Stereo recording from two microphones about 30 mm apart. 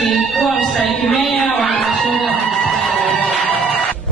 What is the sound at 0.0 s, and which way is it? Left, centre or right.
Music, centre.